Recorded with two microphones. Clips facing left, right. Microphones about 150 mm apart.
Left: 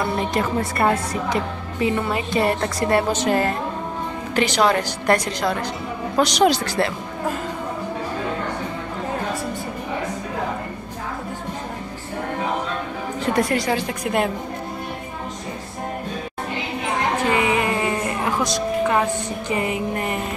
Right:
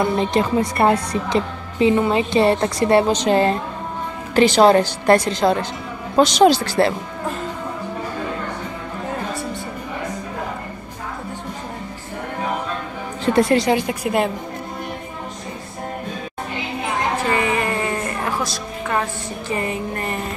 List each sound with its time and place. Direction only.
0.3 s a woman's voice: 25° right (ahead or behind)
13.4 s a woman's voice: 25° right (ahead or behind)
14.0 s a woman's voice: centre (ahead or behind)
17.3 s a sound: 15° left (ahead or behind)